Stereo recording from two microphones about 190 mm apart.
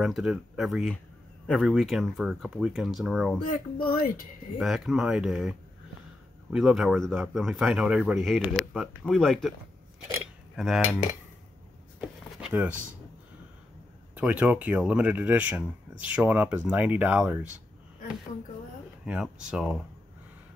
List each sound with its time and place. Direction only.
0.0 s speech: centre (ahead or behind)
3.4 s speech: 50° left (ahead or behind)
4.6 s speech: centre (ahead or behind)
10.5 s speech: centre (ahead or behind)
12.0 s a sound: 5° right (ahead or behind)
14.1 s speech: 5° right (ahead or behind)
19.0 s speech: 5° right (ahead or behind)